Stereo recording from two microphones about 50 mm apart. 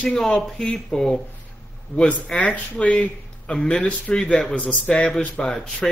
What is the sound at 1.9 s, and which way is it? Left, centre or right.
A man's voice, left.